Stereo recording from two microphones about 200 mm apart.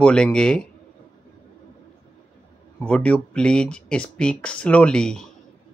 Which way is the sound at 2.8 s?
5° left (ahead or behind).